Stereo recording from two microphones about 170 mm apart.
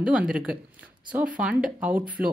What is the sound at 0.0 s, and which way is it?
A woman's voice, 5° right (ahead or behind).